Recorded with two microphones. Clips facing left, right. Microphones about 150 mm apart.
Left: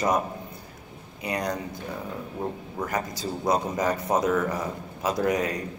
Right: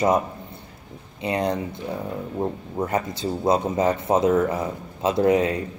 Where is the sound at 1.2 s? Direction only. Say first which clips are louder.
Right 5 dB; 30° right (ahead or behind).